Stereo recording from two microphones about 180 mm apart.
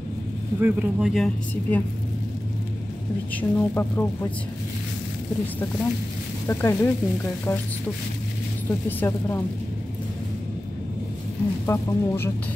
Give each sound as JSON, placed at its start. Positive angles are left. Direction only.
{"t": 0.6, "sound": "speech", "side_deg": -10}
{"t": 3.3, "sound": "speech", "side_deg": 10}
{"t": 6.4, "sound": "speech", "side_deg": 15}
{"t": 8.6, "sound": "speech", "side_deg": 15}
{"t": 11.6, "sound": "speech", "side_deg": 15}